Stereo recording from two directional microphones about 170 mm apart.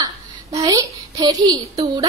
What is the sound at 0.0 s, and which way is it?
A child's voice, 25° right (ahead or behind).